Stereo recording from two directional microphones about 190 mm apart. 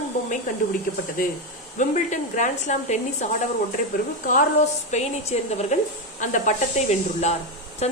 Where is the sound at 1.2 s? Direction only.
45° left (ahead or behind).